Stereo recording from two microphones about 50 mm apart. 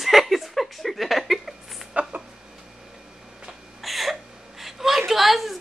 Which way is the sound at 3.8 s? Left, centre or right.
Centre.